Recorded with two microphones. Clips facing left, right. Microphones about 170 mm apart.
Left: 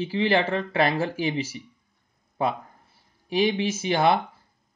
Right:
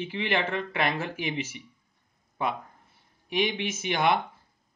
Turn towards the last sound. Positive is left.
turn(degrees=35)  # may be behind; listen again after turning